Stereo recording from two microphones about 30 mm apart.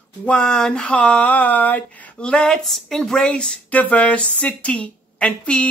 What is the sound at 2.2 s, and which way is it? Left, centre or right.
Speech, left.